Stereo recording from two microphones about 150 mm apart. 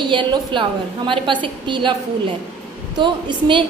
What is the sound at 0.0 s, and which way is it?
A woman's voice, 30° right (ahead or behind).